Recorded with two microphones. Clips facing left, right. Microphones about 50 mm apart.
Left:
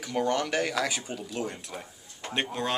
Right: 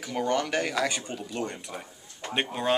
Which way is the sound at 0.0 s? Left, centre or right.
Centre.